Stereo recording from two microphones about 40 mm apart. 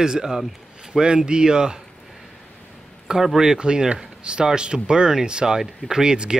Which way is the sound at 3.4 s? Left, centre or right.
Centre.